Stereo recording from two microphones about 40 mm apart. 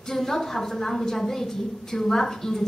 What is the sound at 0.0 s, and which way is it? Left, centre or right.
A woman's voice, centre.